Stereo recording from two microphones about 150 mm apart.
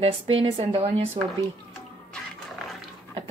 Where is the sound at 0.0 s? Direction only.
40° right (ahead or behind).